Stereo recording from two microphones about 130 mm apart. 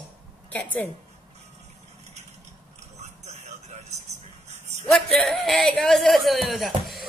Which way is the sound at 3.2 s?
55° right (ahead or behind).